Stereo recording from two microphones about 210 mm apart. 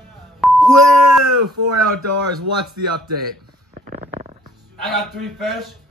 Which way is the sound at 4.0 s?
35° right (ahead or behind).